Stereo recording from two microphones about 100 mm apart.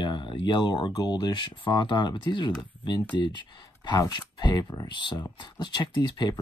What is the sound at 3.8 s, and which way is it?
Speech, 45° left (ahead or behind).